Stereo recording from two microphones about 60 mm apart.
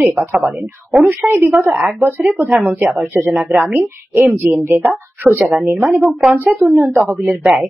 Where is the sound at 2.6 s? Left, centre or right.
Right.